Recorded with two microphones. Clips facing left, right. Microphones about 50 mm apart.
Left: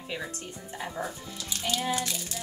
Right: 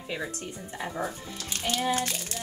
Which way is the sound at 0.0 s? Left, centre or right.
Centre.